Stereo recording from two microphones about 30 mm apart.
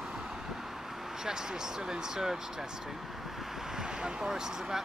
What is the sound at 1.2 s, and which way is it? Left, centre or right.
Speech, right.